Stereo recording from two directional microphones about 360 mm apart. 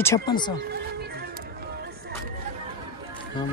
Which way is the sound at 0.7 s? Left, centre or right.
Right.